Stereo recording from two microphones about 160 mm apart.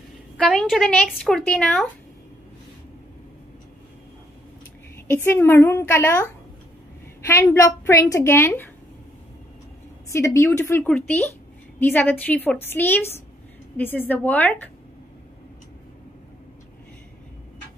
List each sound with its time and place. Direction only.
0.4 s speech: 5° left (ahead or behind)
5.0 s a woman's voice: 15° left (ahead or behind)
7.2 s a woman's voice: 15° left (ahead or behind)
10.0 s a woman's voice: 20° left (ahead or behind)